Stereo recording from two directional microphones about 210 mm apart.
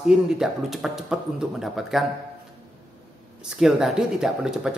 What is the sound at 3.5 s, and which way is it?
A man's voice, centre (ahead or behind).